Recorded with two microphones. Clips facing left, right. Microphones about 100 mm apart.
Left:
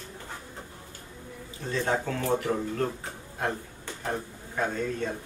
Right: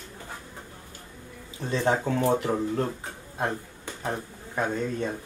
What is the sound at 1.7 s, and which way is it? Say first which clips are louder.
Speech: right 3 dB; 20° right (ahead or behind).